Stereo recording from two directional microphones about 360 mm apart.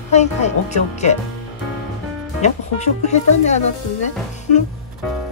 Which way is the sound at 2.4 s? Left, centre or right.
Centre.